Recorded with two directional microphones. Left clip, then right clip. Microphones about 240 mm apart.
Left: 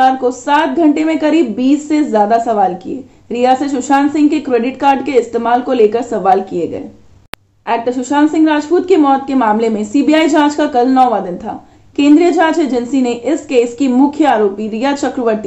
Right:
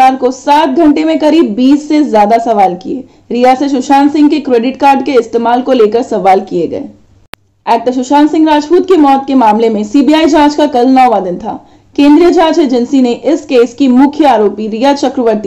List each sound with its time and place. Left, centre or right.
0.2 s speech: right